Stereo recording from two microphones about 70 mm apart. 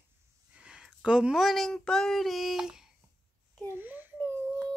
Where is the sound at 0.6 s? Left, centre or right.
Centre.